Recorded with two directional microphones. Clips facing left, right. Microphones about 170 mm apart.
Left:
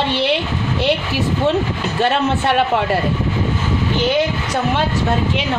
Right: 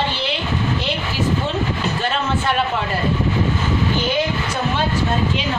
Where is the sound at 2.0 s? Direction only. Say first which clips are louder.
Left 9 dB; 65° left (ahead or behind).